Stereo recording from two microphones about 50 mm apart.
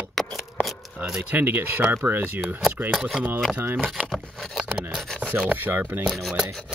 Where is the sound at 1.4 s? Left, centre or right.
Right.